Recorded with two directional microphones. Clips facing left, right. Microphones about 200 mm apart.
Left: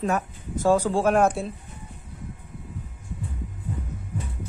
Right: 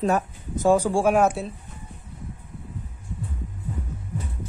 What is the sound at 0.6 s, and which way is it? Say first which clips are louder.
Speech: right 1 dB; 15° right (ahead or behind).